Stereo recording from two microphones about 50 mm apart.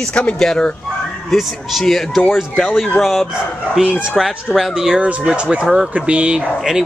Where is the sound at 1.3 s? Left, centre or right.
Centre.